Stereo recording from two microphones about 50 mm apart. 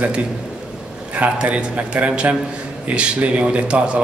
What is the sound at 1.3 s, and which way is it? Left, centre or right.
A man's voice, right.